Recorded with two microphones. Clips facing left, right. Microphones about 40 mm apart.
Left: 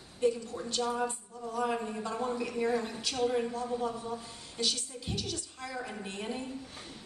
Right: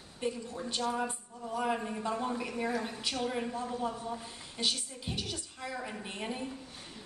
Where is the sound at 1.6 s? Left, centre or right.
Centre.